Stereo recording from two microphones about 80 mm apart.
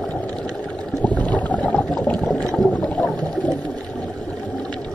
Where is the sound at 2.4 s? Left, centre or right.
Centre.